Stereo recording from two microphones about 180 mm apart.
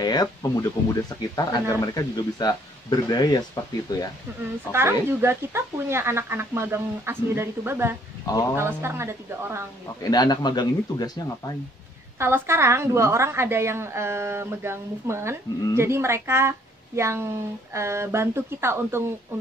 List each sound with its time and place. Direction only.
0.0 s speech: 20° left (ahead or behind)
4.7 s a woman's voice: 15° right (ahead or behind)
10.0 s speech: 25° left (ahead or behind)
12.2 s a woman's voice: 15° right (ahead or behind)